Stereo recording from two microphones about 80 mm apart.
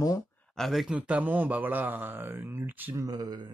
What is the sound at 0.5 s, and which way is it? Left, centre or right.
Speech, centre.